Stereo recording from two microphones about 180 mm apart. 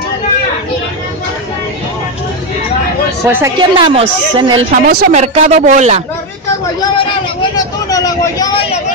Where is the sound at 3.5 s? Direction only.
25° right (ahead or behind).